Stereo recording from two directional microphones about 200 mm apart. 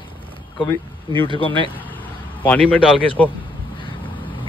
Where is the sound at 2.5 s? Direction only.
5° left (ahead or behind).